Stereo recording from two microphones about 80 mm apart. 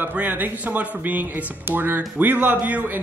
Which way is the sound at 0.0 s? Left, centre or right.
Right.